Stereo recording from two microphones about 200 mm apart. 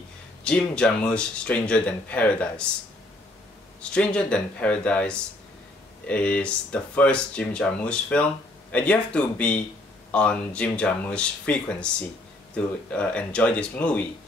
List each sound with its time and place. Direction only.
0.4 s speech: 5° left (ahead or behind)
3.8 s speech: 5° left (ahead or behind)